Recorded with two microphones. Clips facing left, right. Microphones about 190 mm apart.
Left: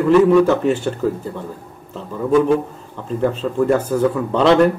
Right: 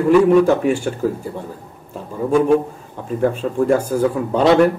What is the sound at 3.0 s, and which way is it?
A man's voice, 10° right (ahead or behind).